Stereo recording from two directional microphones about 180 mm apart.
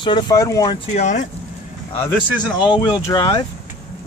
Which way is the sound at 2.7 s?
25° left (ahead or behind).